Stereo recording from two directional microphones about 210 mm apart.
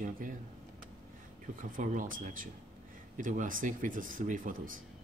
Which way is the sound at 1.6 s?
40° right (ahead or behind).